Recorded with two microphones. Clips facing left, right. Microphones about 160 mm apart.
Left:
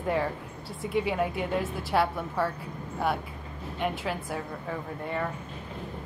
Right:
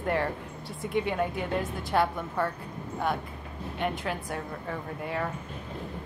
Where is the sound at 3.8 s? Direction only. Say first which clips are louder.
Left 1 dB; centre (ahead or behind).